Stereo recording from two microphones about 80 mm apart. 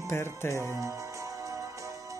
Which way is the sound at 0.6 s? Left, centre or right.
Right.